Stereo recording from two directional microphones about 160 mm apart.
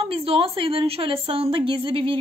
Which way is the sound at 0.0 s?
35° right (ahead or behind).